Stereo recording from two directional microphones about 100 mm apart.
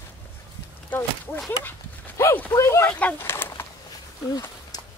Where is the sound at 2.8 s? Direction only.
15° left (ahead or behind).